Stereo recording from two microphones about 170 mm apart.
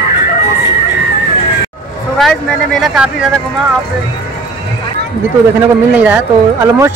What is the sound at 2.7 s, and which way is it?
Speech, 5° right (ahead or behind).